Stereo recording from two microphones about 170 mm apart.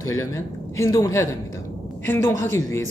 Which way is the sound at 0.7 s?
20° left (ahead or behind).